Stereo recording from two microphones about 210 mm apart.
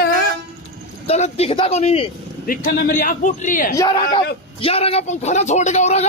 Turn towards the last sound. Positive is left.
turn(degrees=30)  # may be behind; listen again after turning